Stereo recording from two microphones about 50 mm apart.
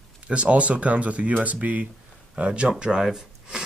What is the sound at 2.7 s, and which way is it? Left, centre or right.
Speech, centre.